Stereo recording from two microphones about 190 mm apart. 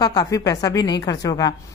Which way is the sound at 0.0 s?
20° left (ahead or behind).